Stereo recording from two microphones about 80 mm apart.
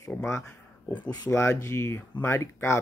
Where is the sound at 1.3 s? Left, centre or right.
Left.